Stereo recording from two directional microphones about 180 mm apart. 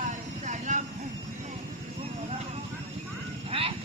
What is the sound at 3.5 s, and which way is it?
Vehicle, 30° right (ahead or behind).